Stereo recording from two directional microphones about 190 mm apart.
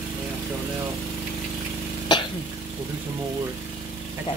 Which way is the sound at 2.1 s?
25° left (ahead or behind).